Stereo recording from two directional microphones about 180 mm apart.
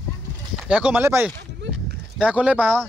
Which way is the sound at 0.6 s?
5° right (ahead or behind).